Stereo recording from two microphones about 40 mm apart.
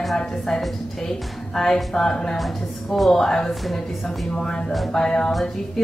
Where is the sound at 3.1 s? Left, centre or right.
Centre.